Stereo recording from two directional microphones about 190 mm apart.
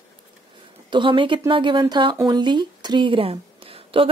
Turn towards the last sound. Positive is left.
turn(degrees=-30)  # may be behind; listen again after turning